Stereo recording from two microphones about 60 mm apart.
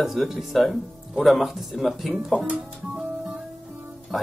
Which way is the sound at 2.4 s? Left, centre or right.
Centre.